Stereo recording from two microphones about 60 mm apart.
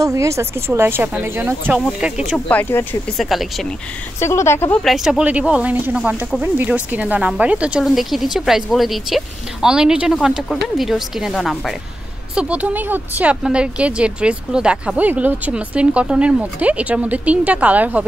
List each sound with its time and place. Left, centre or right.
0.0 s speech: right
1.9 s speech: centre
2.7 s speech: left
3.2 s speech: centre
4.2 s speech: left
4.8 s speech: centre
5.4 s speech: centre
7.8 s speech: centre
9.7 s speech: centre
12.4 s speech: right
13.4 s speech: centre
15.0 s speech: right